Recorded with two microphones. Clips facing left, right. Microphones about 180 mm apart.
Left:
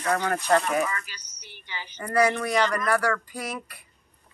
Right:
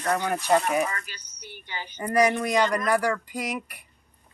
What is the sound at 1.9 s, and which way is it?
Speech, 15° right (ahead or behind).